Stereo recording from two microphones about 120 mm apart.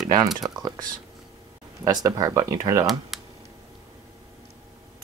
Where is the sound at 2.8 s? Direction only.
Centre (ahead or behind).